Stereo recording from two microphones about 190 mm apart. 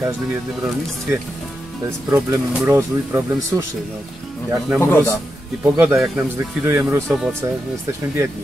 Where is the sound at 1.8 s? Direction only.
10° right (ahead or behind).